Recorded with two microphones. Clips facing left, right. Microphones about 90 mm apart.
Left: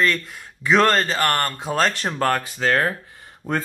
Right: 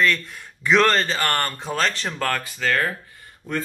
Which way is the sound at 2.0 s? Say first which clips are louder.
Left 4 dB; 20° left (ahead or behind).